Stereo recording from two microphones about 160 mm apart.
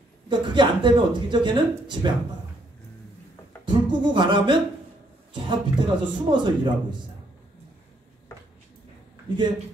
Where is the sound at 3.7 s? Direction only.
30° right (ahead or behind).